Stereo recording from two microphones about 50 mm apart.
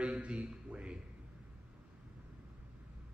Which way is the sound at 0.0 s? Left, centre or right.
Right.